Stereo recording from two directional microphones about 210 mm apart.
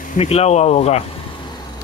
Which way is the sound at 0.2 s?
30° left (ahead or behind).